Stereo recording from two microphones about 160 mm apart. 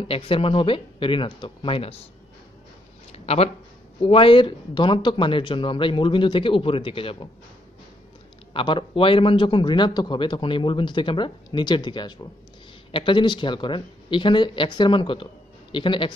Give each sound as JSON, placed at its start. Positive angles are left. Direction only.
{"t": 0.1, "sound": "speech", "side_deg": 35}
{"t": 3.1, "sound": "a sound", "side_deg": 40}
{"t": 4.0, "sound": "speech", "side_deg": 35}
{"t": 8.5, "sound": "speech", "side_deg": 30}